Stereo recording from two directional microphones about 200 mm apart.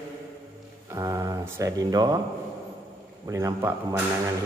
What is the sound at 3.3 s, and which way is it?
Speech, 15° right (ahead or behind).